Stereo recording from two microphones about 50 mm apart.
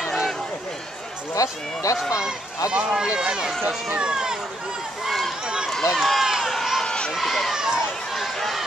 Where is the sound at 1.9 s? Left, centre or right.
Left.